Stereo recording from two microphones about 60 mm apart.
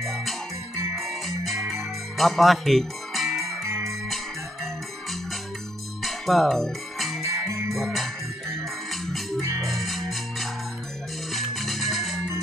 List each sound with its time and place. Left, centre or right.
0.0 s music: centre
3.6 s music: right
6.0 s music: centre
7.4 s music: right
7.7 s music: centre